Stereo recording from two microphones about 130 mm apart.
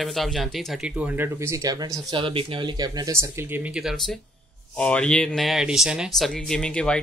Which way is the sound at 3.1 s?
20° right (ahead or behind).